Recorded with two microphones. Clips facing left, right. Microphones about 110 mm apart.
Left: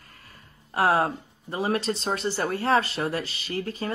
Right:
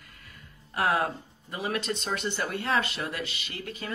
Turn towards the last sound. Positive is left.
turn(degrees=35)  # may be behind; listen again after turning